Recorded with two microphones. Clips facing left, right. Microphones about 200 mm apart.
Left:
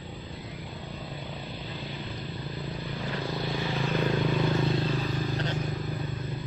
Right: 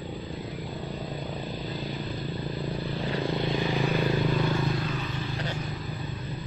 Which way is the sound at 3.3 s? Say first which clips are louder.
Right 3 dB; 20° right (ahead or behind).